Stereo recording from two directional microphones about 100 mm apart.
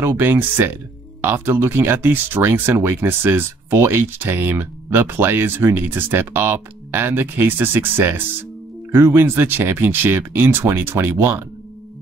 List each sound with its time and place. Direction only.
0.0 s speech: 20° right (ahead or behind)